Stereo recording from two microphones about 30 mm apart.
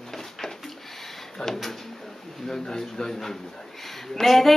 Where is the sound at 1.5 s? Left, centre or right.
Centre.